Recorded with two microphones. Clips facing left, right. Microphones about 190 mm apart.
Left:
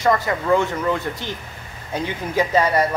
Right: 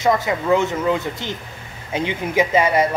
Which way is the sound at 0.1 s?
10° right (ahead or behind).